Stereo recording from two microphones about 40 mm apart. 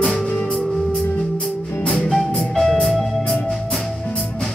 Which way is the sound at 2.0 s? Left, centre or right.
Centre.